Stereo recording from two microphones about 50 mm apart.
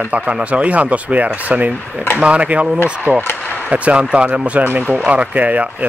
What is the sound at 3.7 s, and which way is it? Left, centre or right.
Speech, right.